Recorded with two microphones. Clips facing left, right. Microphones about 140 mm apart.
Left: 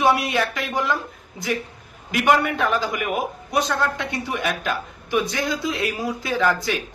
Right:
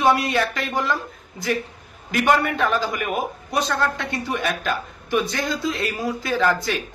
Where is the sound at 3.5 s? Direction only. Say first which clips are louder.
Even; 20° left (ahead or behind).